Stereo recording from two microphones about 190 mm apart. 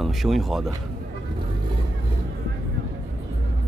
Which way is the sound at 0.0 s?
Centre (ahead or behind).